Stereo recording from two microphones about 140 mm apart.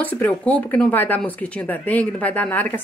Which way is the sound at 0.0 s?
10° left (ahead or behind).